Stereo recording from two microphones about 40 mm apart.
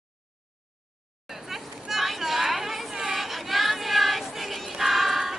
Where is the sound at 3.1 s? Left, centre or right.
Centre.